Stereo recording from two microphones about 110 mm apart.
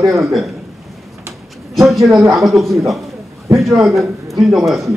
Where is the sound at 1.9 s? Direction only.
Centre (ahead or behind).